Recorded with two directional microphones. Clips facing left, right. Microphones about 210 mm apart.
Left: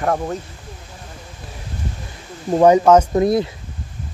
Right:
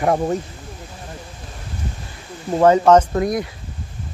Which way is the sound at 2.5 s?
10° left (ahead or behind).